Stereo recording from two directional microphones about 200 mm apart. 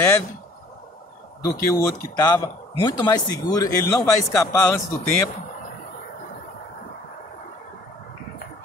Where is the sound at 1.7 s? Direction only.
20° left (ahead or behind).